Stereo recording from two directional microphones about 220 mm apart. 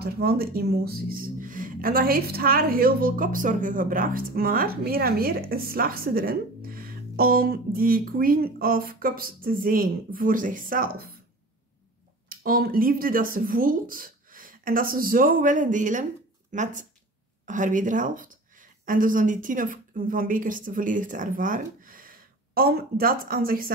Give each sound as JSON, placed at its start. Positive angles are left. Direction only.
{"t": 0.0, "sound": "speech", "side_deg": -45}
{"t": 12.3, "sound": "a woman's voice", "side_deg": -40}